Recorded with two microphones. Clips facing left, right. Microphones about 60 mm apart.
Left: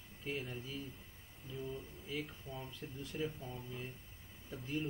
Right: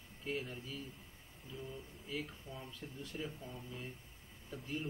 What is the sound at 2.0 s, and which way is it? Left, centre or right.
Speech, centre.